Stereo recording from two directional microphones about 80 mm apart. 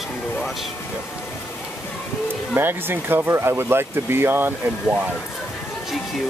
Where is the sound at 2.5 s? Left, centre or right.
Right.